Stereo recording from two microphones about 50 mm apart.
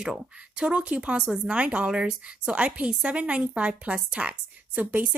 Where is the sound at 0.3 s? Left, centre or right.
Right.